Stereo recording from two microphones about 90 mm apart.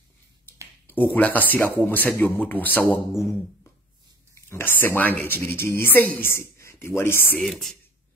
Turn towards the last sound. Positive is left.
turn(degrees=0)  # may be behind; listen again after turning